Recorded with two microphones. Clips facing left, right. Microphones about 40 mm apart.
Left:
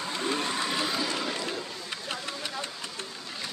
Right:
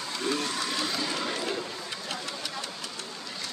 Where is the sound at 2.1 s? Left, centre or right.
Centre.